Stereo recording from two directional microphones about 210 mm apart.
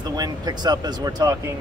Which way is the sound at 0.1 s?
20° right (ahead or behind).